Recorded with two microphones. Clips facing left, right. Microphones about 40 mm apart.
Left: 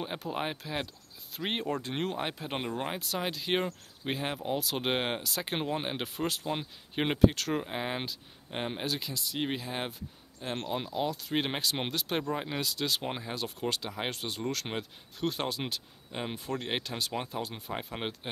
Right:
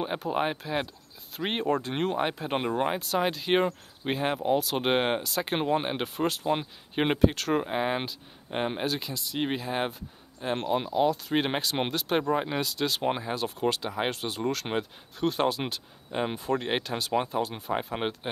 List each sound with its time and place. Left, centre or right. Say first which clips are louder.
0.0 s speech: right 6 dB; centre